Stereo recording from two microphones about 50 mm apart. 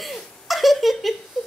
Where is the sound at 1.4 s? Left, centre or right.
Centre.